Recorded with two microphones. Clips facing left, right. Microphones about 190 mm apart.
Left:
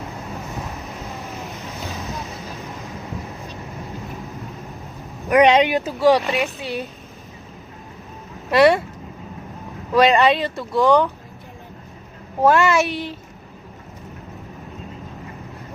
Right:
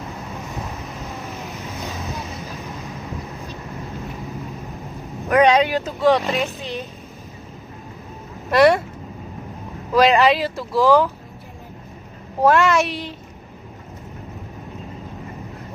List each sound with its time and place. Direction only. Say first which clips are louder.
0.0 s vehicle: even; centre (ahead or behind)
2.5 s train: right 1 dB; centre (ahead or behind)
3.0 s vehicle: even; centre (ahead or behind)
5.3 s speech: left 1 dB; 20° left (ahead or behind)
5.9 s speech: left 1 dB; centre (ahead or behind)
8.5 s speech: even; centre (ahead or behind)
9.9 s speech: even; centre (ahead or behind)
12.4 s speech: even; centre (ahead or behind)